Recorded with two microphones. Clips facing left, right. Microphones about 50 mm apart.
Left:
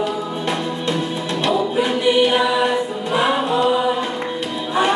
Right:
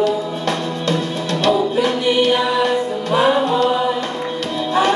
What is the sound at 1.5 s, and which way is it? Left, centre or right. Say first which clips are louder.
Music: right 3 dB; centre.